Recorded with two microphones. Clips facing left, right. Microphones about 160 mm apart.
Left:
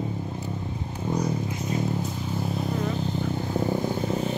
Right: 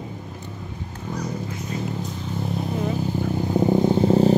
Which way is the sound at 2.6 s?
5° right (ahead or behind).